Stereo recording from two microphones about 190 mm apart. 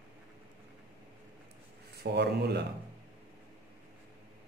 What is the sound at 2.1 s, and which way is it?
Speech, 65° right (ahead or behind).